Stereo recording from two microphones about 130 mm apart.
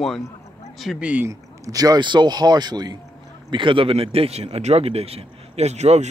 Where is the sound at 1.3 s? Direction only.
25° right (ahead or behind); by 6.1 s 60° right (ahead or behind).